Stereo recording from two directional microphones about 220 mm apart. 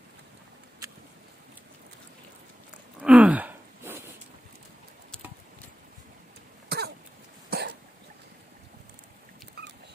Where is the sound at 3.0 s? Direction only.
5° right (ahead or behind).